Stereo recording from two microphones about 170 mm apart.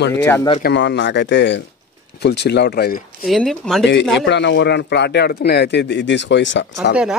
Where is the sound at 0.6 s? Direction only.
80° left.